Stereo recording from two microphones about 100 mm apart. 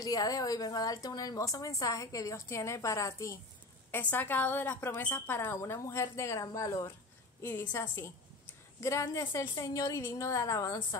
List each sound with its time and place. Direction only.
0.0 s a woman's voice: 35° left (ahead or behind)
3.9 s a woman's voice: 20° left (ahead or behind)
7.4 s a woman's voice: 20° left (ahead or behind)
8.8 s a woman's voice: 30° left (ahead or behind)